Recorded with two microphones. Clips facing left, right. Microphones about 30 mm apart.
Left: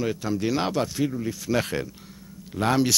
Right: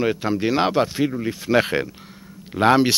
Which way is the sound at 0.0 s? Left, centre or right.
Right.